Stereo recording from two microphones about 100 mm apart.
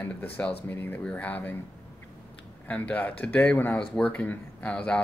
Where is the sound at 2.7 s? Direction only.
15° left (ahead or behind).